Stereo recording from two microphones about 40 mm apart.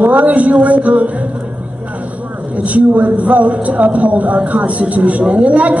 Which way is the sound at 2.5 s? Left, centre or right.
Right.